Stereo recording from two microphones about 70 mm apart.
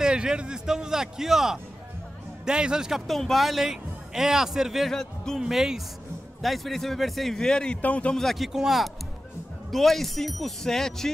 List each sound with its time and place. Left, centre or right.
0.0 s a man's voice: centre
3.1 s a man's voice: centre
4.9 s speech: centre
5.4 s a man's voice: centre
8.2 s a man's voice: centre